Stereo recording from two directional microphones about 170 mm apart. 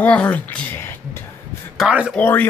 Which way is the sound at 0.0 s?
10° left (ahead or behind).